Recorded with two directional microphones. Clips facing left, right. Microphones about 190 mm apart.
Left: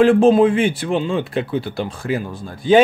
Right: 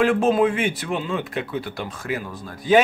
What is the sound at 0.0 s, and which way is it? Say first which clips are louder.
Speech: left 6 dB; 30° left (ahead or behind).